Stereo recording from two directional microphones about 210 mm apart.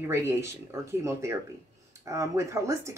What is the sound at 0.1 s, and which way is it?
Speech, 10° right (ahead or behind).